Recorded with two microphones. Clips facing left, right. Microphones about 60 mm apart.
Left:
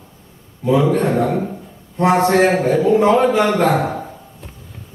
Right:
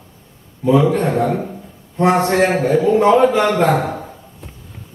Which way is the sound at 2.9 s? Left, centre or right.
Centre.